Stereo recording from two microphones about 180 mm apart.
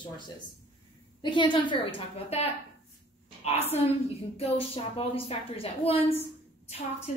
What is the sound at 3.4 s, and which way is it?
A woman's voice, 35° left (ahead or behind).